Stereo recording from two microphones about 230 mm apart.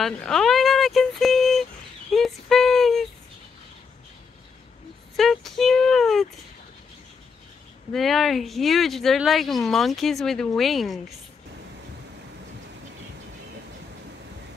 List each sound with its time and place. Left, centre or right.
0.0 s speech: centre
2.1 s female singing: centre
5.1 s speech: centre
7.9 s speech: centre